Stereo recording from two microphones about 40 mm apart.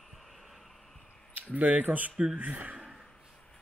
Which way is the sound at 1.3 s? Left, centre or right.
Right.